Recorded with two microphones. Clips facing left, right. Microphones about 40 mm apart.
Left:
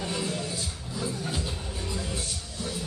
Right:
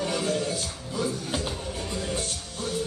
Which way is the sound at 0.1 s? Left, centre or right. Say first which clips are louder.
Right 5 dB; right.